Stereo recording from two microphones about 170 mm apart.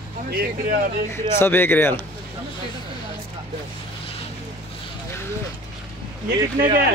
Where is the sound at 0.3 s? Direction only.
65° right (ahead or behind).